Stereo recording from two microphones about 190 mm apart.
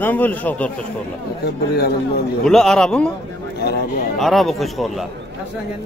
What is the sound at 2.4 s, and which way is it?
Speech, 5° left (ahead or behind).